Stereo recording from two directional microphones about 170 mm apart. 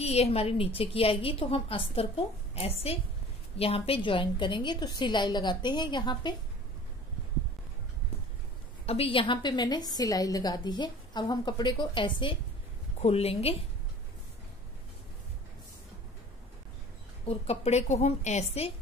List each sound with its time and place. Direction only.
0.0 s a woman's voice: 35° left (ahead or behind)
8.8 s a woman's voice: 35° left (ahead or behind)
17.3 s a woman's voice: 40° left (ahead or behind)